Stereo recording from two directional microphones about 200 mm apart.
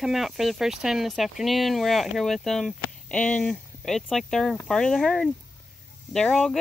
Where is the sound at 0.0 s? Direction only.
Centre (ahead or behind).